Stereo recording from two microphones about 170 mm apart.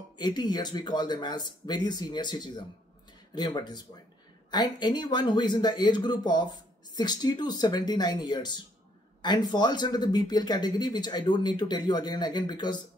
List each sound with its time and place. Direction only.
0.2 s speech: 25° left (ahead or behind)